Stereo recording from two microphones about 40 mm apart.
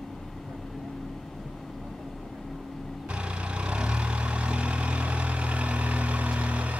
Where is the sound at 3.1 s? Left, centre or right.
Right.